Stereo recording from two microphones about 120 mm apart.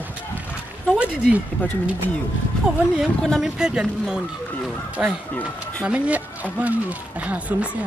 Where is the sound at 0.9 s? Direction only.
10° right (ahead or behind).